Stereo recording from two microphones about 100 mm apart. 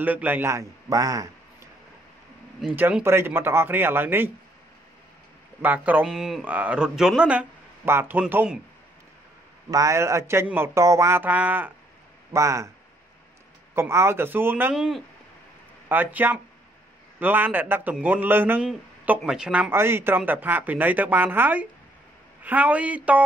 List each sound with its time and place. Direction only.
0.0 s a man's voice: 15° right (ahead or behind); by 1.7 s 35° right (ahead or behind)
2.7 s speech: 20° right (ahead or behind)
5.6 s speech: 20° right (ahead or behind)
6.0 s speech: 5° right (ahead or behind)
7.8 s speech: 25° right (ahead or behind)
9.7 s speech: 35° right (ahead or behind)
11.2 s speech: 15° right (ahead or behind)
12.3 s speech: 30° right (ahead or behind)
13.7 s speech: 25° right (ahead or behind)
14.7 s speech: 5° right (ahead or behind)
15.9 s speech: 20° right (ahead or behind)
18.7 s speech: 10° right (ahead or behind)
19.7 s speech: 25° right (ahead or behind)